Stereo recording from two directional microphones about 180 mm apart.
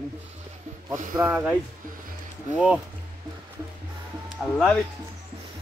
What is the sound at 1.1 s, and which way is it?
Speech, 10° right (ahead or behind).